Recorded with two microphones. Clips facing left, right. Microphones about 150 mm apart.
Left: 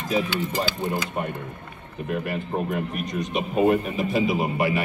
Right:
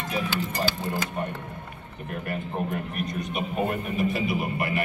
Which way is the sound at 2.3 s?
90° left.